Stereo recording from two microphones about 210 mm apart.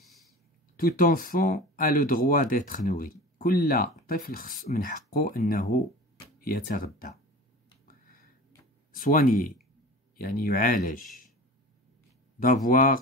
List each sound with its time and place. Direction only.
0.7 s speech: 45° left (ahead or behind)
7.8 s a sound: 40° left (ahead or behind)
8.9 s speech: 40° left (ahead or behind)
12.4 s speech: 40° left (ahead or behind)